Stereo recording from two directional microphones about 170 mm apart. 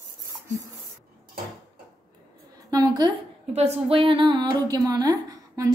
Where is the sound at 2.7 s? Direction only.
20° right (ahead or behind).